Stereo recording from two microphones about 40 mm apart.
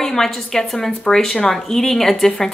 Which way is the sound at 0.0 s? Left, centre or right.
Centre.